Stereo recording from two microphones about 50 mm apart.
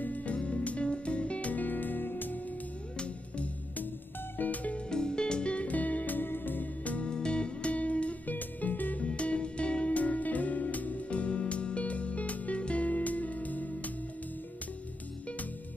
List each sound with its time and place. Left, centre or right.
0.0 s music: left
4.4 s music: left
4.8 s music: centre
7.1 s music: centre; by 9.0 s left
9.0 s music: left